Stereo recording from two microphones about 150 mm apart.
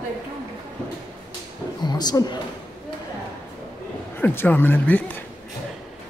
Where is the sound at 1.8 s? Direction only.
30° left (ahead or behind).